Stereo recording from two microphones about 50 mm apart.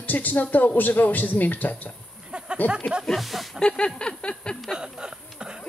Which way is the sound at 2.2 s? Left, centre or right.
Centre.